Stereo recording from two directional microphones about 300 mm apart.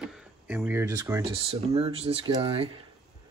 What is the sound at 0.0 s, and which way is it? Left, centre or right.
Speech, centre.